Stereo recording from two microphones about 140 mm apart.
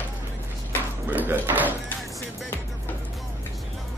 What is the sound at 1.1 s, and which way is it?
Speech, 15° right (ahead or behind).